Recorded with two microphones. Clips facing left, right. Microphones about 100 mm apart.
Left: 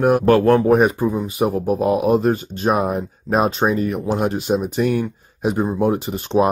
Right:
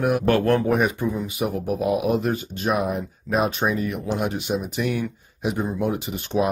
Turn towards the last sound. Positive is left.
turn(degrees=40)  # may be behind; listen again after turning